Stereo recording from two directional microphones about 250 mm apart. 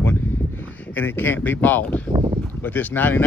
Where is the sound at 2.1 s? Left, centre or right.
Right.